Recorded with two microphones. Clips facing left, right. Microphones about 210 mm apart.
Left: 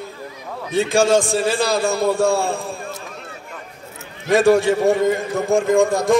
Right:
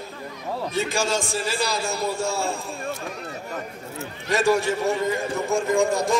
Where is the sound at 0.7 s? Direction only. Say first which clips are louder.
Left 10 dB; 55° left (ahead or behind).